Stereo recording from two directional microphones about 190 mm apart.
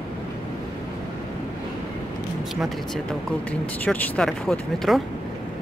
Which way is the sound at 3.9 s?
5° left (ahead or behind).